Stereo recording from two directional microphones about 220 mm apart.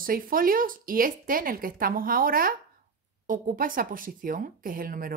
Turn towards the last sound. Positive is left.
turn(degrees=-40)  # may be behind; listen again after turning